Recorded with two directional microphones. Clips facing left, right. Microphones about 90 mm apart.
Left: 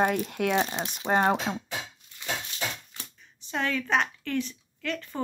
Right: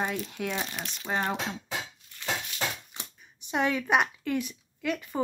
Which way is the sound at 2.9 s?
20° right (ahead or behind).